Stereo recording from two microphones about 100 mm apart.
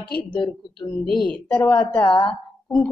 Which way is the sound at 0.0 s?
50° left (ahead or behind).